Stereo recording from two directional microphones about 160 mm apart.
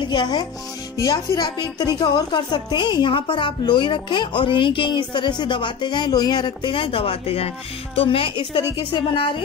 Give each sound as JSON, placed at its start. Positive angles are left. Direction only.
{"t": 0.0, "sound": "speech", "side_deg": 30}